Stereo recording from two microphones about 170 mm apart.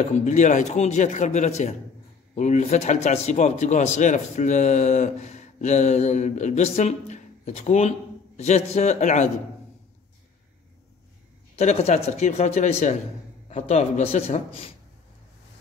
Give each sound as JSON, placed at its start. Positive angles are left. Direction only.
{"t": 0.1, "sound": "speech", "side_deg": 45}
{"t": 11.5, "sound": "speech", "side_deg": 40}